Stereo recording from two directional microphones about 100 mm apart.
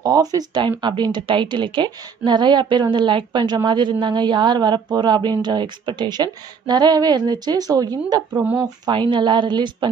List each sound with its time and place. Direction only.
0.0 s speech: 40° right (ahead or behind)
8.3 s speech: 15° right (ahead or behind)
8.8 s speech: 50° right (ahead or behind)